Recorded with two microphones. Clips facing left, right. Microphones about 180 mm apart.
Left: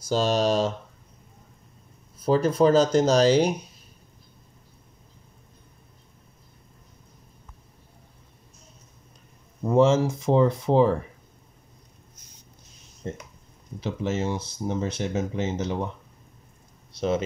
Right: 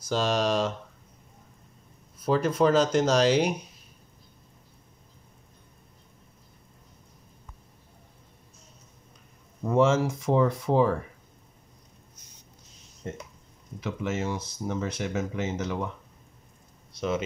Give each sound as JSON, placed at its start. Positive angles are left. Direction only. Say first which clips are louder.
{"t": 0.1, "sound": "speech", "louder": "left 3 dB", "side_deg": 30}
{"t": 2.2, "sound": "speech", "louder": "left 3 dB", "side_deg": 35}
{"t": 9.7, "sound": "speech", "louder": "left 3 dB", "side_deg": 25}
{"t": 13.7, "sound": "speech", "louder": "left 3 dB", "side_deg": 30}